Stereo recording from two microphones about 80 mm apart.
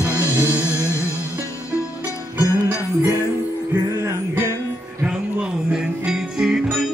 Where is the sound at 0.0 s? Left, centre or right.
Left.